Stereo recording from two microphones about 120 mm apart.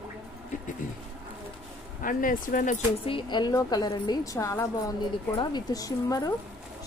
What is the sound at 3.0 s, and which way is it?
A woman's voice, 40° left (ahead or behind).